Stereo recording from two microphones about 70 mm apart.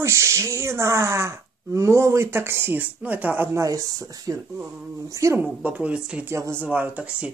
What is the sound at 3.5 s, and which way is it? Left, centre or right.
Speech, right.